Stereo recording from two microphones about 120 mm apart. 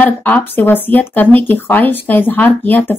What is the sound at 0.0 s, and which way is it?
Speech, 15° left (ahead or behind).